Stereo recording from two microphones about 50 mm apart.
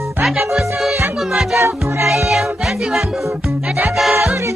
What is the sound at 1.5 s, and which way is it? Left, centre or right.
Music, right.